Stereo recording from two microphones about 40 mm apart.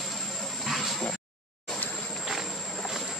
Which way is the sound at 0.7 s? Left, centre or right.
Centre.